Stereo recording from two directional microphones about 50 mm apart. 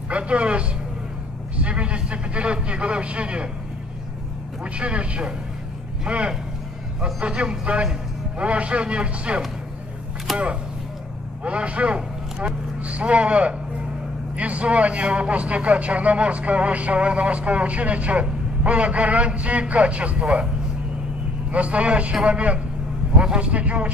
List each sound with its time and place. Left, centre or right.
0.1 s a man's voice: right
1.6 s a sound: right
4.7 s a man's voice: right
21.5 s a man's voice: right